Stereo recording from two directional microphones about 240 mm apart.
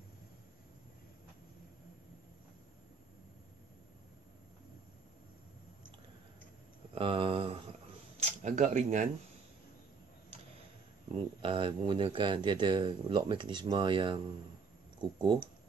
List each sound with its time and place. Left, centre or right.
7.0 s a sound: right
8.4 s speech: right
11.4 s speech: right